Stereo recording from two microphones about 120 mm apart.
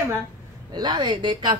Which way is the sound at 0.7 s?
35° right (ahead or behind).